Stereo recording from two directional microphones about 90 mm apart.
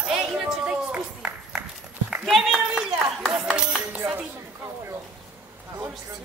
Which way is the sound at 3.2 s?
5° right (ahead or behind).